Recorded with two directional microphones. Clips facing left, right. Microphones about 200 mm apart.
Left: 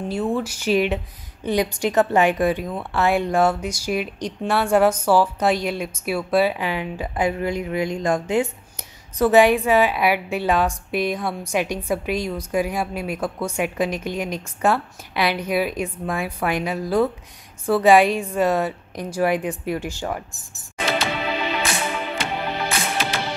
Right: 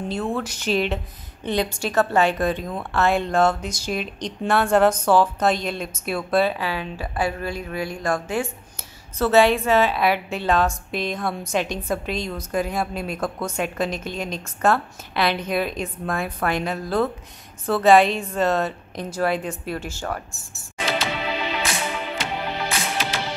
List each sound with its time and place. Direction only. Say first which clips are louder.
0.1 s a woman's voice: left 4 dB; 10° left (ahead or behind)
20.8 s music: left 2 dB; 55° left (ahead or behind)